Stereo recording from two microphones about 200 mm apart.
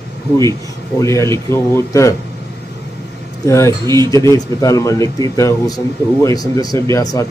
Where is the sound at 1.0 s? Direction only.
15° left (ahead or behind).